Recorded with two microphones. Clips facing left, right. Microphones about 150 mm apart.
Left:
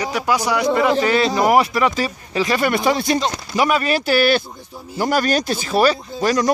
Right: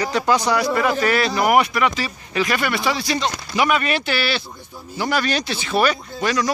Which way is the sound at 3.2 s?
35° left (ahead or behind).